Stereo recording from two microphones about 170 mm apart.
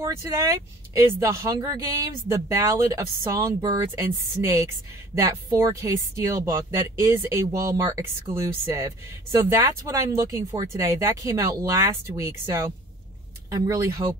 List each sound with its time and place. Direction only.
0.0 s speech: 15° right (ahead or behind)
13.5 s speech: 20° right (ahead or behind)